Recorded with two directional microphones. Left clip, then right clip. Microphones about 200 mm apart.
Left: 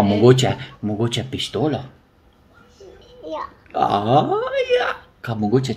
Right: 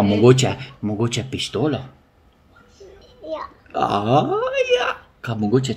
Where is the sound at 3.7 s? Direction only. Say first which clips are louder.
Left 1 dB; 25° right (ahead or behind).